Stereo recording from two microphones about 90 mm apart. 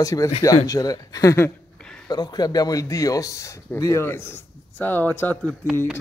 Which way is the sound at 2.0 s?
50° left (ahead or behind).